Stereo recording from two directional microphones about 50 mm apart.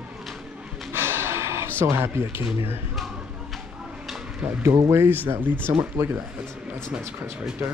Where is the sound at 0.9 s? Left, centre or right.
Right.